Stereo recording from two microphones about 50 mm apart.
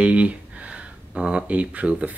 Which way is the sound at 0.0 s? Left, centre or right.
Right.